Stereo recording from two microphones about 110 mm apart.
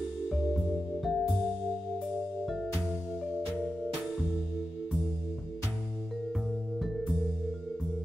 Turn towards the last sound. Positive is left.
turn(degrees=0)  # may be behind; listen again after turning